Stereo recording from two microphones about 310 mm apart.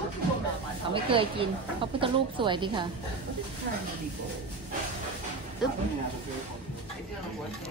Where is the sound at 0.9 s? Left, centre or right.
Centre.